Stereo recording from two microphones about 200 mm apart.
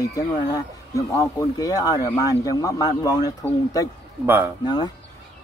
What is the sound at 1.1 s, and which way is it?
A man's voice, 15° left (ahead or behind).